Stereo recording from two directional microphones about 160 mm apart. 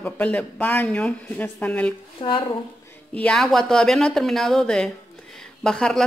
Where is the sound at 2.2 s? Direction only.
30° left (ahead or behind).